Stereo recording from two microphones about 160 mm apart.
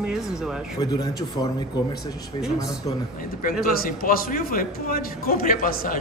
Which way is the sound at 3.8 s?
65° left (ahead or behind).